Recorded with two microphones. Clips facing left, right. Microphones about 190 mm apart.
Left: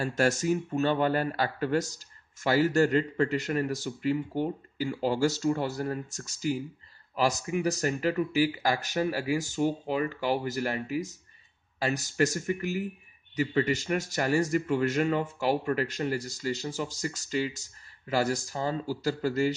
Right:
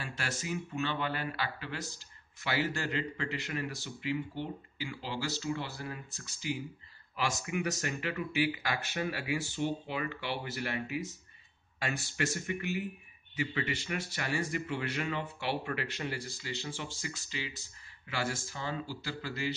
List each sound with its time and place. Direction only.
0.0 s speech: 45° left (ahead or behind)